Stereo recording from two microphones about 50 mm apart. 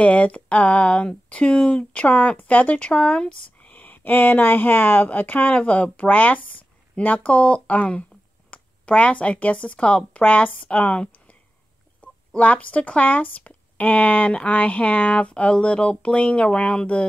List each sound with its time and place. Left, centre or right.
0.0 s speech: left
3.7 s speech: left
12.4 s speech: left